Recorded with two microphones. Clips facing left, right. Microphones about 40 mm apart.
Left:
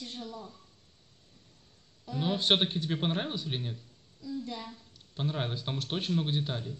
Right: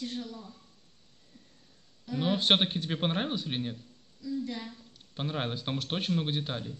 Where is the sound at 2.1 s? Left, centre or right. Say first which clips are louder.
Right 2 dB; centre.